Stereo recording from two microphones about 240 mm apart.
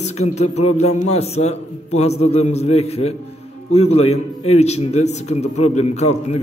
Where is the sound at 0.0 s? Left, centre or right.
Left.